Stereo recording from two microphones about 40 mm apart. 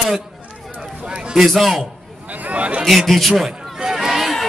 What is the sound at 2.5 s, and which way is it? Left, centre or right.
Chatter, right.